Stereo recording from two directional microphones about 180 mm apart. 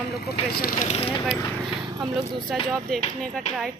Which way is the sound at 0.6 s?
55° left (ahead or behind).